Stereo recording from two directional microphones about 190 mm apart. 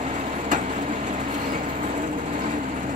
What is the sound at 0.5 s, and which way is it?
Vehicle, 40° right (ahead or behind).